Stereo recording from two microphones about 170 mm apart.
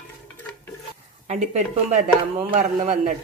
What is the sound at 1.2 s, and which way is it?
Speech, 40° right (ahead or behind).